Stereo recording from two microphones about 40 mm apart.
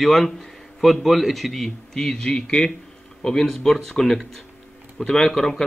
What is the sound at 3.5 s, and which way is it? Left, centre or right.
A man's voice, centre.